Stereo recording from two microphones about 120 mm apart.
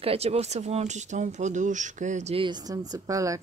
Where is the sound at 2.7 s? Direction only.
30° right (ahead or behind).